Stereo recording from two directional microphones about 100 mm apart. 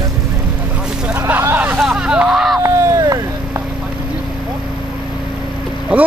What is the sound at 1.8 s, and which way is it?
Vehicle, 5° right (ahead or behind).